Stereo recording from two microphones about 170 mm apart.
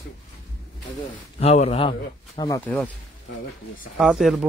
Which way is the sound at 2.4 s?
20° left (ahead or behind).